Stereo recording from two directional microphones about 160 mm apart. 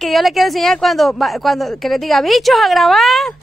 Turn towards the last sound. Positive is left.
turn(degrees=0)  # may be behind; listen again after turning